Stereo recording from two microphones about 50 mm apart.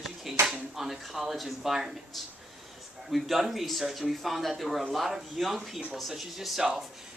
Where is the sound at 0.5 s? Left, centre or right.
Centre.